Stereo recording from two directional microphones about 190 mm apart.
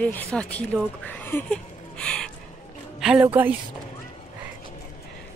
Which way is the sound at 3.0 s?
5° right (ahead or behind).